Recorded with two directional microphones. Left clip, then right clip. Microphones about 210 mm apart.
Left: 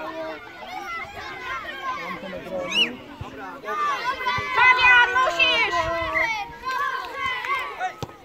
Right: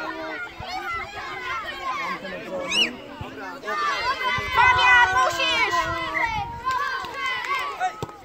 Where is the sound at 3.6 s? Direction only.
55° right (ahead or behind).